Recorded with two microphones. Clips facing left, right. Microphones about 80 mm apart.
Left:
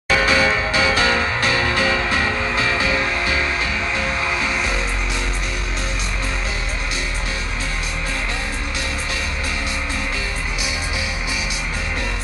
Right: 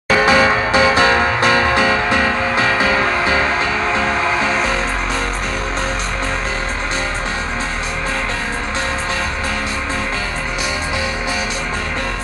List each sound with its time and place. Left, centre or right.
0.1 s music: right